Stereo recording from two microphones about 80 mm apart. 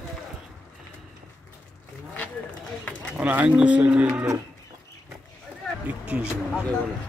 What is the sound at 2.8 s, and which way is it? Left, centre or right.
Speech, centre.